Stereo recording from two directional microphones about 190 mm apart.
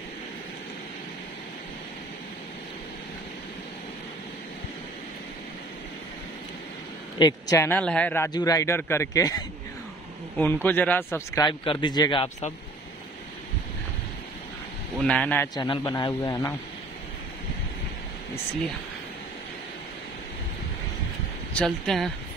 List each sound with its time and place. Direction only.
7.2 s a man's voice: 20° left (ahead or behind)
8.3 s a man's voice: 20° left (ahead or behind)
15.0 s a man's voice: 5° left (ahead or behind)
21.5 s speech: centre (ahead or behind)